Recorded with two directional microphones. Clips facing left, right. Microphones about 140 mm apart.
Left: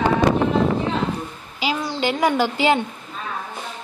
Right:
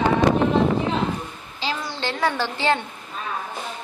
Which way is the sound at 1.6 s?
15° left (ahead or behind).